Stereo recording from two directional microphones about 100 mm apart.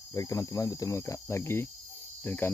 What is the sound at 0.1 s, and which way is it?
Cricket, 35° left (ahead or behind).